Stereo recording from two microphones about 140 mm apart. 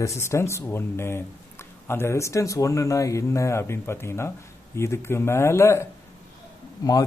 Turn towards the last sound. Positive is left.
turn(degrees=25)  # may be behind; listen again after turning